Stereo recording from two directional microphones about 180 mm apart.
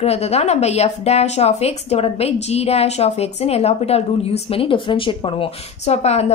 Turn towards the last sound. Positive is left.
turn(degrees=35)  # may be behind; listen again after turning